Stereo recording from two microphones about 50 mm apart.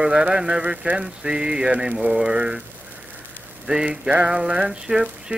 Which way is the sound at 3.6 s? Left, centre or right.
Centre.